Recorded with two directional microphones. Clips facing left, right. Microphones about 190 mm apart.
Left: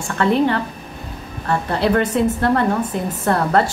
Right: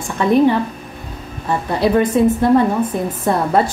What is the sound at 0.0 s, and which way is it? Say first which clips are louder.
A woman's voice: right 4 dB; 15° right (ahead or behind).